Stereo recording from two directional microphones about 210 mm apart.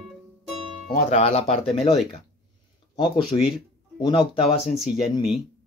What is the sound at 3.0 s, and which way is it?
Speech, 20° left (ahead or behind).